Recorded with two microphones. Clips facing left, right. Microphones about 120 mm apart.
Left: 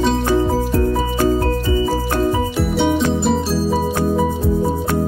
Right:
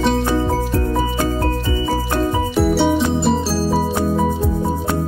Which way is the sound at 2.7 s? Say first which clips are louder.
Left 1 dB; centre (ahead or behind).